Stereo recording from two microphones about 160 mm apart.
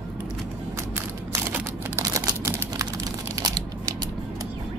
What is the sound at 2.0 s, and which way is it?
Crumpling, 20° right (ahead or behind).